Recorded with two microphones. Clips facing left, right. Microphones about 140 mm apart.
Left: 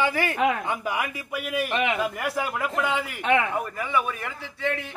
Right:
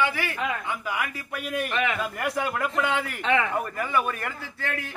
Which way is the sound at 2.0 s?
Centre (ahead or behind).